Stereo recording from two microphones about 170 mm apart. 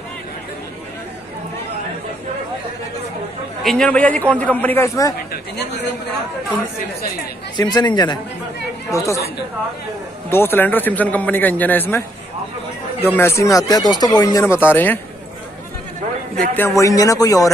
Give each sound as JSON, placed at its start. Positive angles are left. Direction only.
{"t": 3.6, "sound": "a man's voice", "side_deg": 5}
{"t": 5.3, "sound": "speech", "side_deg": 80}
{"t": 7.5, "sound": "speech", "side_deg": 25}
{"t": 10.3, "sound": "a man's voice", "side_deg": 15}
{"t": 13.0, "sound": "speech", "side_deg": 15}
{"t": 16.5, "sound": "speech", "side_deg": 15}